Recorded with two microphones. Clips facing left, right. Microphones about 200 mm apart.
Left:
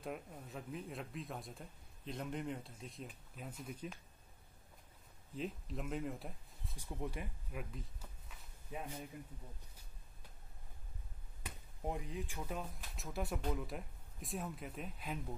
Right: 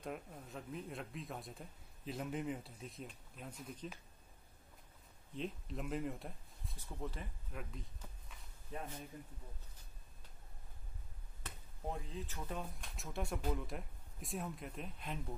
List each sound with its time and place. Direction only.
0.0 s speech: centre (ahead or behind)
5.3 s speech: centre (ahead or behind)
6.8 s speech: 15° left (ahead or behind)
7.7 s walk: 5° left (ahead or behind)
11.4 s speech: 15° left (ahead or behind)